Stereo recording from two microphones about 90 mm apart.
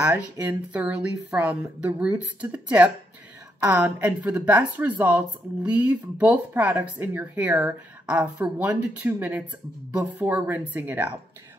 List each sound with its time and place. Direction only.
0.0 s a woman's voice: 20° right (ahead or behind)